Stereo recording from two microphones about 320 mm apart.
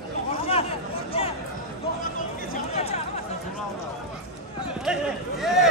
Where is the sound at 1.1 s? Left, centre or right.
Centre.